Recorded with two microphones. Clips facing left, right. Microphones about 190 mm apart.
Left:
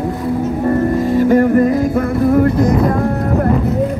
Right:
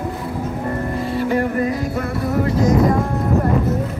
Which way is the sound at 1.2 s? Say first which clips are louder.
Left 8 dB; 45° left (ahead or behind).